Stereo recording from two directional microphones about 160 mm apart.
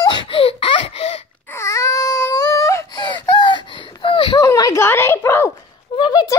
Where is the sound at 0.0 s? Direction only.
30° left (ahead or behind).